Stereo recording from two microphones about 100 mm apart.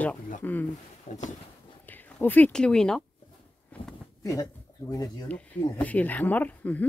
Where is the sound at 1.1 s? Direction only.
90° left.